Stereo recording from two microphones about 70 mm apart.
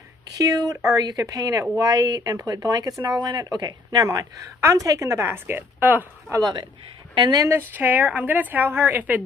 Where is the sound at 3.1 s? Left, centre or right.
Right.